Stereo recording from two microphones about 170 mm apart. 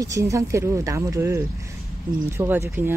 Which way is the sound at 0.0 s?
20° right (ahead or behind).